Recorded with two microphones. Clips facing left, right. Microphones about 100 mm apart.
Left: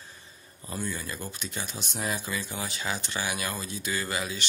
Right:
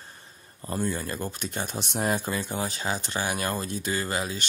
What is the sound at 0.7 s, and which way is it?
Speech, 45° right (ahead or behind).